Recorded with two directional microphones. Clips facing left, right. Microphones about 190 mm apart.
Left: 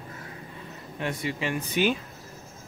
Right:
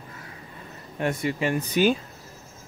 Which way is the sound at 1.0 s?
45° right (ahead or behind).